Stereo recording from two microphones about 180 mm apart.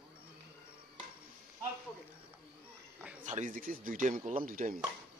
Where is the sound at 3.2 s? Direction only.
45° right (ahead or behind).